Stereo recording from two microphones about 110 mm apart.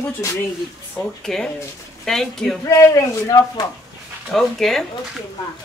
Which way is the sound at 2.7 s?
30° left (ahead or behind).